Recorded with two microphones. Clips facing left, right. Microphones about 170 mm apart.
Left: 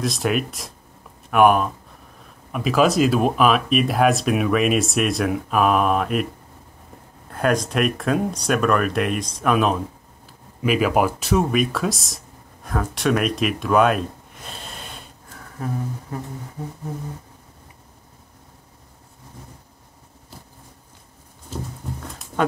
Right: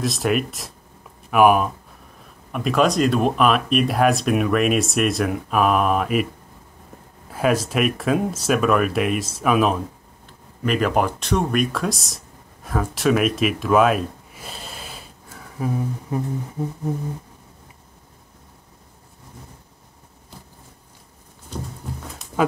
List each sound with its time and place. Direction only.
0.0 s speech: centre (ahead or behind)
7.2 s speech: 5° right (ahead or behind)
12.6 s a sound: centre (ahead or behind)
16.1 s music: 15° right (ahead or behind)
22.0 s dog: centre (ahead or behind)